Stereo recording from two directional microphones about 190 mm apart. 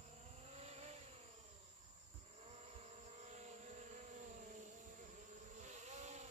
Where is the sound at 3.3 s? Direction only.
40° right (ahead or behind).